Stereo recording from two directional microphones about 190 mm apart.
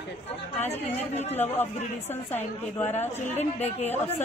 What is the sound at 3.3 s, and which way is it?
Speech, 35° left (ahead or behind).